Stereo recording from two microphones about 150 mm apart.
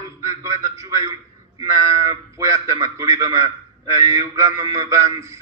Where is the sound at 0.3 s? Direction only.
20° right (ahead or behind).